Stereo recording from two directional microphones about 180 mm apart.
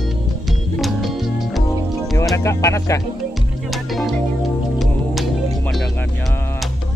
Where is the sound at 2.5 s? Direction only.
15° left (ahead or behind).